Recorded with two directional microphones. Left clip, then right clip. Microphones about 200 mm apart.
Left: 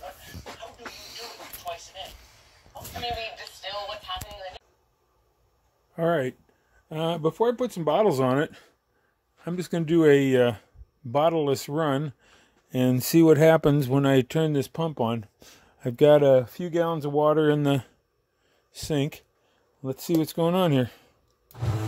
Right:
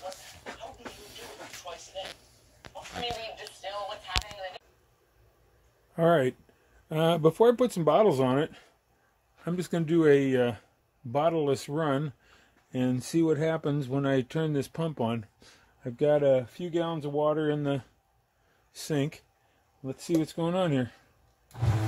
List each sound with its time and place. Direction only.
5.9 s speech: 10° right (ahead or behind)
7.8 s speech: 5° left (ahead or behind)
8.1 s speech: 25° left (ahead or behind)
9.4 s speech: 10° left (ahead or behind)
12.7 s speech: 40° left (ahead or behind); by 15.6 s 25° left (ahead or behind)
15.8 s speech: 45° left (ahead or behind)
18.7 s speech: 25° left (ahead or behind)
19.8 s speech: 45° left (ahead or behind)